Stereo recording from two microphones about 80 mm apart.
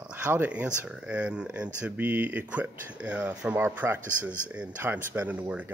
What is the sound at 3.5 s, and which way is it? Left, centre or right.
Speech, right.